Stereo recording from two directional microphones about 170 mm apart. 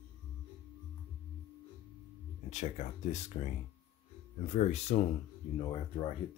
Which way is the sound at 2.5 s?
45° left (ahead or behind).